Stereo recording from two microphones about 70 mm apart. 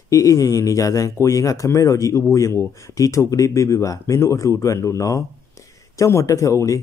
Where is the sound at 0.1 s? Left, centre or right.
Left.